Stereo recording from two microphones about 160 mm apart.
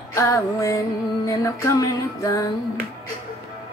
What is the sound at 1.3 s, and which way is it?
Music, 20° left (ahead or behind).